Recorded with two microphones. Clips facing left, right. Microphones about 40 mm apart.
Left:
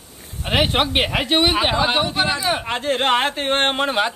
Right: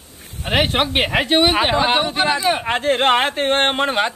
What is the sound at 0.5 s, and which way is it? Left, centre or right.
A man's voice, centre.